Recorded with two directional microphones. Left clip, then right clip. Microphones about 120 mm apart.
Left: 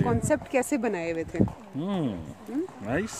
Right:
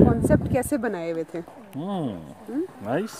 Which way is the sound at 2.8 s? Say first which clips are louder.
Right 3 dB; 5° right (ahead or behind).